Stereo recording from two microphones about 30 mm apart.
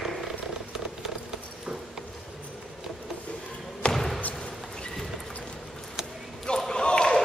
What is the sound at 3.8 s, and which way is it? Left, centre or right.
Basketball bounce, left.